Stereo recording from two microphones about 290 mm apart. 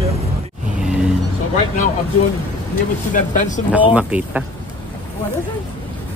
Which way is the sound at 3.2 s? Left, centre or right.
Left.